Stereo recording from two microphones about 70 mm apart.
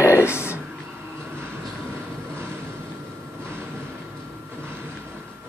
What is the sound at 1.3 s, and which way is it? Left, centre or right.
Vehicle, right.